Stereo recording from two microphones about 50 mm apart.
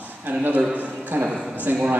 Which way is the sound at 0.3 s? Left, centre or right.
Right.